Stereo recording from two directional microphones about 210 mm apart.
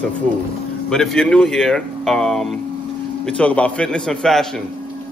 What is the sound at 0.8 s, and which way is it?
Speech, 5° left (ahead or behind).